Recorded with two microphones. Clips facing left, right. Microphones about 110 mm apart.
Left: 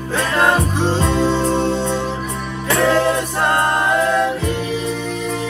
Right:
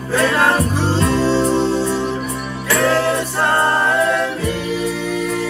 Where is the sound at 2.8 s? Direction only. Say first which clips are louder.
Left 1 dB; centre (ahead or behind).